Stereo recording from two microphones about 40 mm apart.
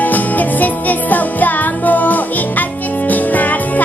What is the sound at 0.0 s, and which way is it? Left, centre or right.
Music, left.